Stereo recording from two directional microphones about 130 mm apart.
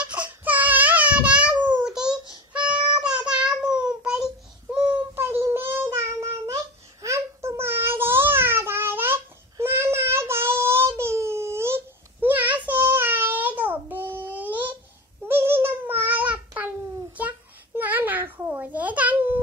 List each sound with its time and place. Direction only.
0.0 s a sound: 10° right (ahead or behind)
2.5 s child singing: 40° right (ahead or behind)
3.0 s child singing: 5° right (ahead or behind)
5.9 s babbling: 25° right (ahead or behind)
17.7 s babbling: 15° right (ahead or behind)